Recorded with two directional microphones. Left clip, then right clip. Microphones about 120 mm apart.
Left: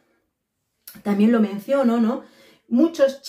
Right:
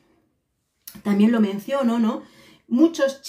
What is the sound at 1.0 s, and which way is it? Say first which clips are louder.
Speech: left 1 dB; 15° right (ahead or behind).